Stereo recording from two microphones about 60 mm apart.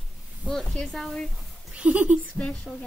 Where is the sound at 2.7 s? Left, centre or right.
Centre.